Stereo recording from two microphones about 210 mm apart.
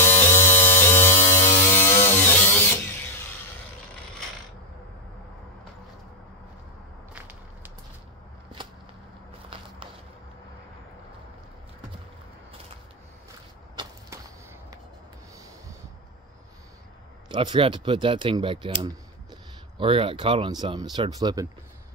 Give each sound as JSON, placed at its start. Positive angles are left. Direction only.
{"t": 0.0, "sound": "electric shaver", "side_deg": 10}
{"t": 8.6, "sound": "a sound", "side_deg": -25}
{"t": 17.3, "sound": "speech", "side_deg": -20}